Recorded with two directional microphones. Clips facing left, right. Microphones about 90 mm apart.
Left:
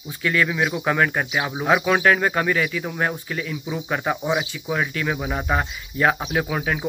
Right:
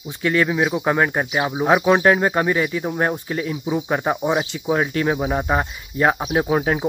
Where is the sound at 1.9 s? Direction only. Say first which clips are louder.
Right 3 dB; 25° right (ahead or behind).